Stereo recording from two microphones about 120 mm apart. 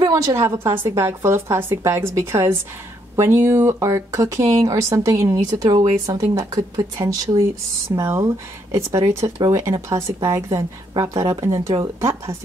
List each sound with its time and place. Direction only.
0.0 s speech: 30° right (ahead or behind)